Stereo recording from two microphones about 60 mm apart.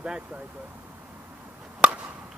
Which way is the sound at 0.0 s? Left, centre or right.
Centre.